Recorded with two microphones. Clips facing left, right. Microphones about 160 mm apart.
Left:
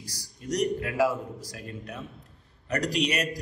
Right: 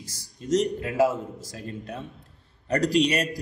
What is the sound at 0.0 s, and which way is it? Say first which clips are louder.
A man's voice: right 2 dB; 25° right (ahead or behind).